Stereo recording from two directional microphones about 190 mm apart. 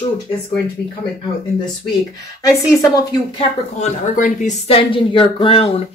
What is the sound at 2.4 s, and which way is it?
A woman's voice, 20° left (ahead or behind).